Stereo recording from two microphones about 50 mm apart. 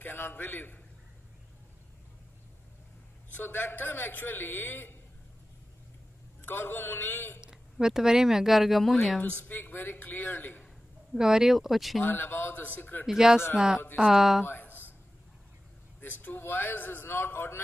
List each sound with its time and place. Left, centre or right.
0.0 s a man's voice: left
3.3 s a man's voice: left
6.4 s a man's voice: left
7.7 s speech: centre
9.2 s a woman's voice: left
9.5 s a man's voice: left
11.1 s speech: centre
12.0 s a man's voice: left
13.0 s speech: centre
14.4 s a sound: left
16.0 s a man's voice: left